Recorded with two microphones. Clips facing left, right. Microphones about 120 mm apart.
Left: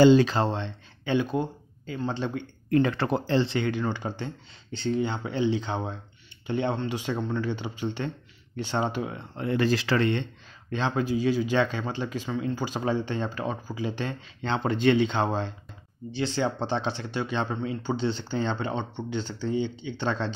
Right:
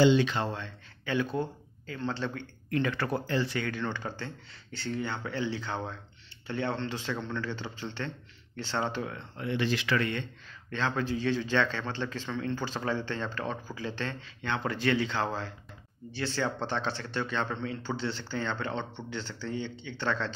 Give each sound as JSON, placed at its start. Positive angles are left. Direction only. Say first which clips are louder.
{"t": 0.0, "sound": "speech", "louder": "left 6 dB", "side_deg": 40}
{"t": 2.7, "sound": "speech", "louder": "left 6 dB", "side_deg": 25}
{"t": 9.4, "sound": "speech", "louder": "left 5 dB", "side_deg": 40}
{"t": 10.7, "sound": "speech", "louder": "left 4 dB", "side_deg": 15}
{"t": 14.4, "sound": "speech", "louder": "left 6 dB", "side_deg": 25}